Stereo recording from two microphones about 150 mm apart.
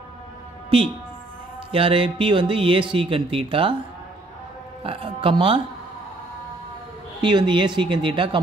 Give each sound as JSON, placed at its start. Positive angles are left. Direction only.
{"t": 1.7, "sound": "speech", "side_deg": -35}
{"t": 4.8, "sound": "speech", "side_deg": -40}
{"t": 7.2, "sound": "speech", "side_deg": -30}